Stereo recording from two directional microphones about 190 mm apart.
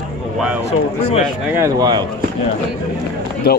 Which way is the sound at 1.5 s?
20° right (ahead or behind).